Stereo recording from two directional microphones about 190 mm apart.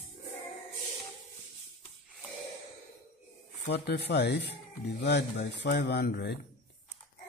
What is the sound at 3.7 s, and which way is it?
Speech, 60° left (ahead or behind).